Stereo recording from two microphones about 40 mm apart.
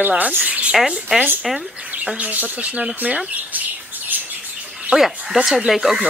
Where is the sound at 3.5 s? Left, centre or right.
Right.